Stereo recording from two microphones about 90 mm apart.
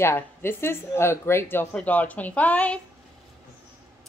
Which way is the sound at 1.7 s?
15° left (ahead or behind).